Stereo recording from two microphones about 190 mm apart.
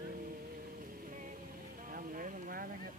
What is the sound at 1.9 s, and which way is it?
Speech, 45° right (ahead or behind).